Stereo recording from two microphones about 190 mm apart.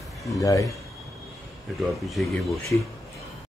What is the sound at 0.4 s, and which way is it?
Speech, 15° left (ahead or behind).